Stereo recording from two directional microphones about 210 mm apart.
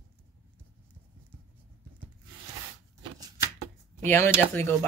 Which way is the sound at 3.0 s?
20° right (ahead or behind).